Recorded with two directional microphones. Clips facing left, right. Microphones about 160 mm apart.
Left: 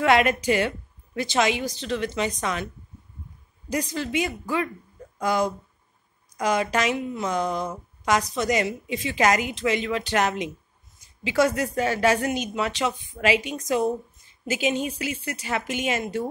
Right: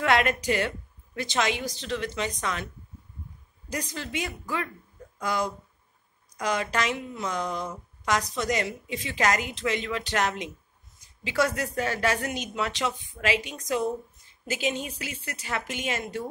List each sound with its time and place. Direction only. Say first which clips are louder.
0.0 s a woman's voice: left 4 dB; 10° left (ahead or behind)
3.7 s a woman's voice: left 7 dB; 10° left (ahead or behind)
6.4 s a woman's voice: left 4 dB; 5° left (ahead or behind)
8.0 s a woman's voice: left 4 dB; 10° left (ahead or behind)